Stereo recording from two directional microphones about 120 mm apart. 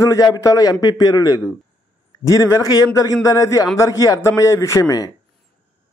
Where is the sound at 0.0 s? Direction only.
30° left (ahead or behind).